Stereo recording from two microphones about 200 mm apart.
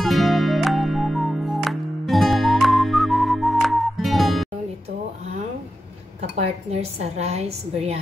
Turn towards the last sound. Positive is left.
turn(degrees=-30)  # may be behind; listen again after turning